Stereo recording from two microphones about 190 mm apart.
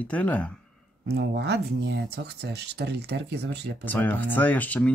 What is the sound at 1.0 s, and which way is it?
Speech, 60° right (ahead or behind).